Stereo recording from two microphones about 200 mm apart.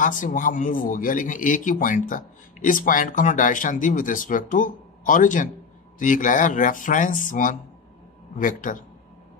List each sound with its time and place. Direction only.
0.0 s speech: 40° left (ahead or behind)